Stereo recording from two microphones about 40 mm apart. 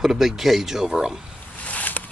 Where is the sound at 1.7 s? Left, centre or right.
Left.